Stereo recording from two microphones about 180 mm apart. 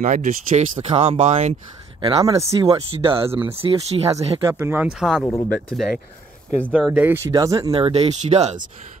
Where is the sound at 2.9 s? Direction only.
30° right (ahead or behind).